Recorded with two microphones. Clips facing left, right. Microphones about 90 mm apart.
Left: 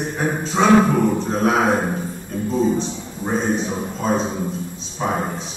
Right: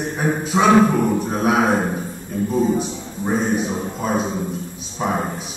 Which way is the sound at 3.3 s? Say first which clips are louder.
Right 1 dB; 10° right (ahead or behind).